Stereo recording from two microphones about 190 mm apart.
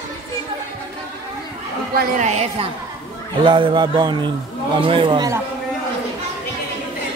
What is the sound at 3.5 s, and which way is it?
A man's voice, 25° right (ahead or behind).